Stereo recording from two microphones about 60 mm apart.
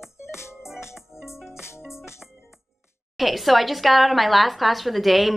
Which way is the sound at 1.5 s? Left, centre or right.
Left.